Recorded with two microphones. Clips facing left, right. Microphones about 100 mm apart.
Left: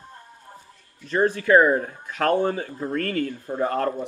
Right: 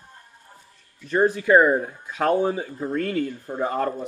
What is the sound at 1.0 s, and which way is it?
Speech, 5° right (ahead or behind).